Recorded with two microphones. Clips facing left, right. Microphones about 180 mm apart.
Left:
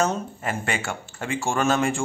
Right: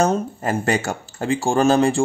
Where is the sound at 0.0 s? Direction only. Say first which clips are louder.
Right 5 dB; 40° right (ahead or behind).